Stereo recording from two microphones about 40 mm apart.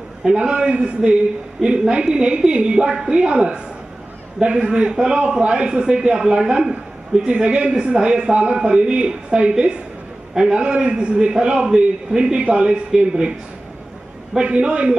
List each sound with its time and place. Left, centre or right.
0.2 s a man's voice: right
14.4 s a man's voice: right